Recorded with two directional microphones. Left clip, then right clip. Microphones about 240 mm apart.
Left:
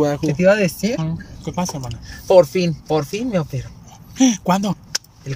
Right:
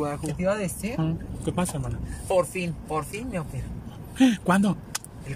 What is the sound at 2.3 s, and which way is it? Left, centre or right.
Speech, left.